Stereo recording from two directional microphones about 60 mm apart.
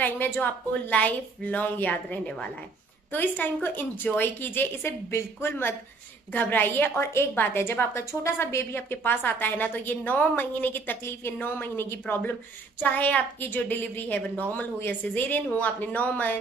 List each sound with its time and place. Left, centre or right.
0.0 s a woman's voice: left